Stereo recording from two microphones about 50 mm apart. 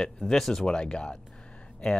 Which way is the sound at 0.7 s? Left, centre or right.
Centre.